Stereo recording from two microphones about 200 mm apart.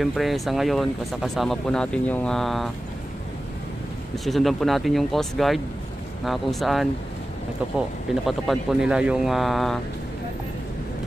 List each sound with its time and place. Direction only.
0.0 s speech: centre (ahead or behind)
4.1 s speech: centre (ahead or behind)
8.3 s speech: 5° right (ahead or behind)